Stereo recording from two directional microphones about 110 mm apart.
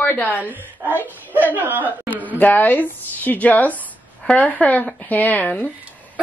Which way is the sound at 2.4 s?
15° left (ahead or behind).